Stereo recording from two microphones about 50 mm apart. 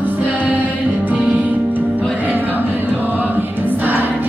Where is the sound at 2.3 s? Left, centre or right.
Right.